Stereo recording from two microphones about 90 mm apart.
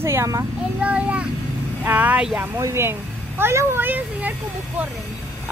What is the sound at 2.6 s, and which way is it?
Speech, 30° right (ahead or behind).